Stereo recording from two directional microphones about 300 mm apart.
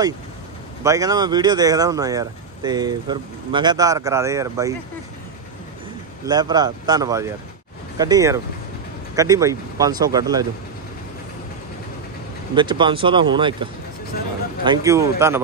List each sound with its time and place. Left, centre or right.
0.8 s speech: centre
6.2 s speech: centre
12.5 s speech: centre